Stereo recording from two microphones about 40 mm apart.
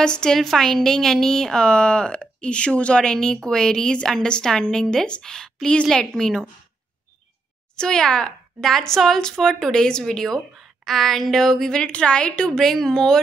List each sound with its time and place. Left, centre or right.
0.0 s a woman's voice: centre
0.4 s a woman's voice: centre
7.7 s a woman's voice: centre
11.9 s a woman's voice: left
12.7 s a woman's voice: centre